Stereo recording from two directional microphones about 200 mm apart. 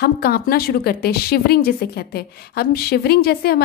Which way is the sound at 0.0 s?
50° left (ahead or behind).